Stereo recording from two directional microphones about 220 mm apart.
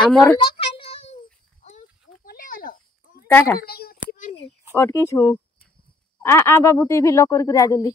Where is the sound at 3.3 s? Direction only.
10° left (ahead or behind).